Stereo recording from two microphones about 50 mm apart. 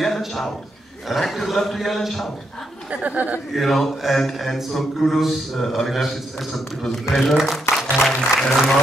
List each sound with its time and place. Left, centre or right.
0.0 s a sound: centre
1.0 s speech: centre
2.9 s speech: right
3.5 s speech: centre
7.7 s music: left
8.1 s speech: centre